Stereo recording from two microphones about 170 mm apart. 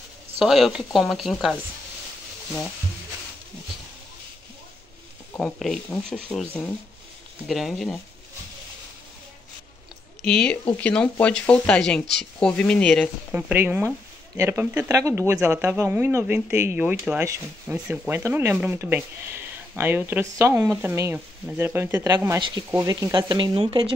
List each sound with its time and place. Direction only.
0.4 s speech: centre (ahead or behind)
5.4 s speech: centre (ahead or behind)
10.2 s speech: 5° left (ahead or behind)
13.3 s speech: 10° right (ahead or behind); by 23.9 s 30° right (ahead or behind)